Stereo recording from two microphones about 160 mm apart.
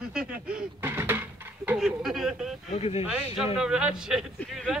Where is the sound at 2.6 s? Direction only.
40° left (ahead or behind).